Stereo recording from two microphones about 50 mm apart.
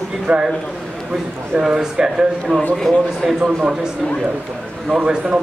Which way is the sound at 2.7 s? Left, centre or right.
Centre.